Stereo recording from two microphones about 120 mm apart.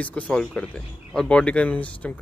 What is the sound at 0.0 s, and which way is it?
Speech, 10° left (ahead or behind).